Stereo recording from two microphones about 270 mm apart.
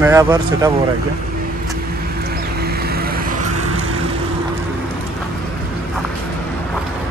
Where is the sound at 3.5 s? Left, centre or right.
Right.